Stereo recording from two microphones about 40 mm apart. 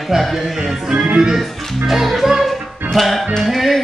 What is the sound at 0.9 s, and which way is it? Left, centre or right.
Speech, right.